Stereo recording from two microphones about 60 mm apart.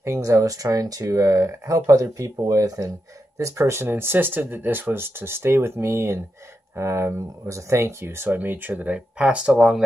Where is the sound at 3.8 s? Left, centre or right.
Right.